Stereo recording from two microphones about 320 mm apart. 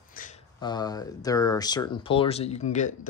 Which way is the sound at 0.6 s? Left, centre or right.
Centre.